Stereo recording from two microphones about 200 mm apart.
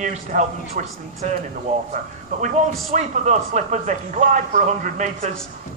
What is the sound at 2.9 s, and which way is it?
Speech, 35° right (ahead or behind).